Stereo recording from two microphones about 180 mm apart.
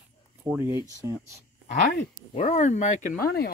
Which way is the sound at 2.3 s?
40° left (ahead or behind).